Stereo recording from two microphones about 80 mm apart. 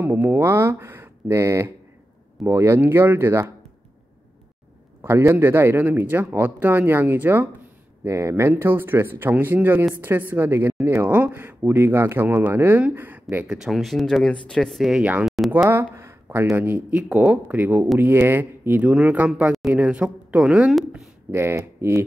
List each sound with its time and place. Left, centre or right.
0.0 s speech: right
5.0 s speech: right
8.0 s speech: right
13.5 s speech: centre
15.2 s a sound: centre
15.6 s a sound: right
16.5 s speech: right
21.3 s speech: right